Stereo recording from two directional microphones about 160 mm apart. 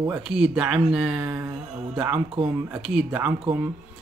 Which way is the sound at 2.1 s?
30° right (ahead or behind).